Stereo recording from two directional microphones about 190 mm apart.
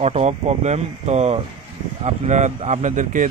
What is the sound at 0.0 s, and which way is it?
Speech, 35° right (ahead or behind).